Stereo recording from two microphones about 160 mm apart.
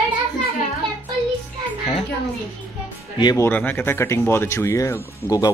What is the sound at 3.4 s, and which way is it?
Speech, 10° left (ahead or behind).